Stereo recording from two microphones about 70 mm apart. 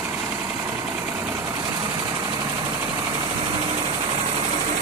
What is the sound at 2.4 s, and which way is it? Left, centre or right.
Vehicle, right.